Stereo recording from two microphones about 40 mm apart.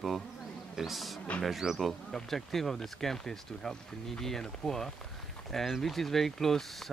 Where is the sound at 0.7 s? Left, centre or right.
Centre.